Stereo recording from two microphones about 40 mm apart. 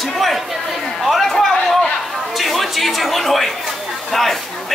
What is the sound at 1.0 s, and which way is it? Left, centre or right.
Speech, centre.